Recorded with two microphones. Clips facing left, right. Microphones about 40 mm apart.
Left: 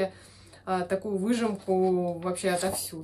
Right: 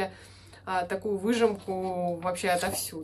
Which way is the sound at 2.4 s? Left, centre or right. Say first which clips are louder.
Even; right.